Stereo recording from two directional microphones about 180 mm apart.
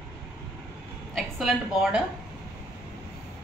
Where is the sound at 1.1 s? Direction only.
Centre (ahead or behind).